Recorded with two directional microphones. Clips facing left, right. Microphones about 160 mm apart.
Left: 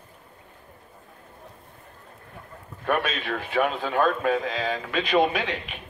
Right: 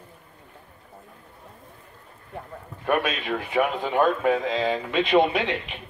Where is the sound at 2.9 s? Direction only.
5° right (ahead or behind).